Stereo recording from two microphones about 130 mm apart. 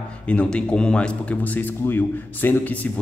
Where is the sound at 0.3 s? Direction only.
10° left (ahead or behind).